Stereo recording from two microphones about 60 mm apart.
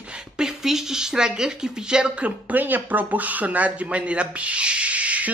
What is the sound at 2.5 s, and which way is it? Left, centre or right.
Speech, right.